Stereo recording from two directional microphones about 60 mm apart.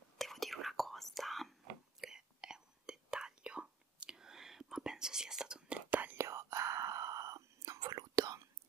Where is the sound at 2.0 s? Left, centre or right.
Centre.